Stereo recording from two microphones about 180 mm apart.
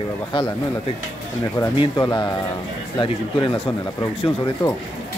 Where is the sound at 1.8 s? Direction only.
25° left (ahead or behind).